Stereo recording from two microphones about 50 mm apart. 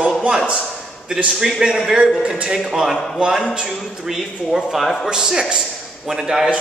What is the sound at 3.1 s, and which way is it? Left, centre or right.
A man's voice, centre.